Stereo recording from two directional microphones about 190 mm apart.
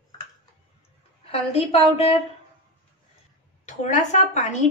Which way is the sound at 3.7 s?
40° left (ahead or behind).